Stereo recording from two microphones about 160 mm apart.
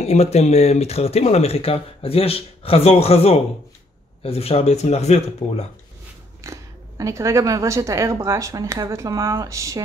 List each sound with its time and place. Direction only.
0.0 s speech: 40° left (ahead or behind)
6.4 s speech: 20° right (ahead or behind)